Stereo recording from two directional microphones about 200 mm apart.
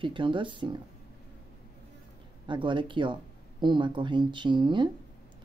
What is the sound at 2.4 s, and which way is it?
Speech, 25° right (ahead or behind).